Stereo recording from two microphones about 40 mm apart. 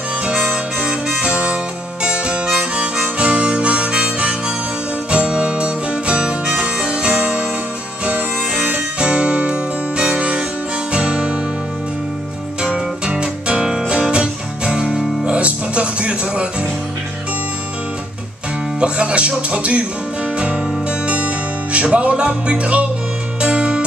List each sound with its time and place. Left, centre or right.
0.2 s harmonica: right
1.0 s harmonica: centre
1.3 s music: right
2.0 s harmonica: right
5.1 s music: right
12.6 s music: right
18.8 s music: right